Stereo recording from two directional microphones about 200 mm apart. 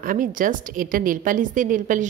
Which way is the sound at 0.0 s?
45° right (ahead or behind).